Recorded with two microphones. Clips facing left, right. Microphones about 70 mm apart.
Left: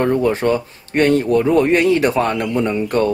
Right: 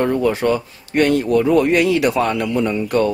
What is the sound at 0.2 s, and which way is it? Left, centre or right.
Speech, left.